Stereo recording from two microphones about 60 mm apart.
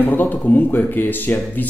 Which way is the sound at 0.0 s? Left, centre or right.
Left.